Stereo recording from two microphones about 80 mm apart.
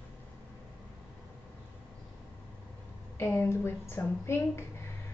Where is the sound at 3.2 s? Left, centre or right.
Left.